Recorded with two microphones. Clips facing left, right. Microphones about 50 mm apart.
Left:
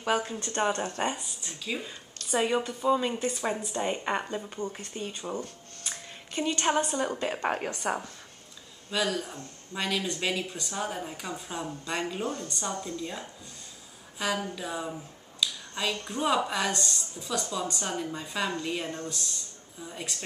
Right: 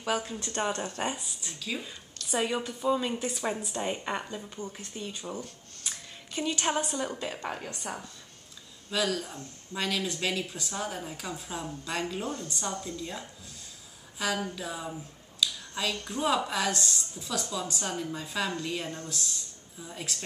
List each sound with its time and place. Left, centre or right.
0.0 s speech: centre
5.4 s a sound: centre
7.0 s speech: centre
7.4 s a woman's voice: left
8.9 s speech: centre
15.4 s a sound: centre
16.1 s speech: centre